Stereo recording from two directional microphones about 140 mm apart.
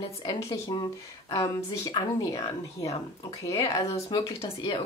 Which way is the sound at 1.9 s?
25° left (ahead or behind).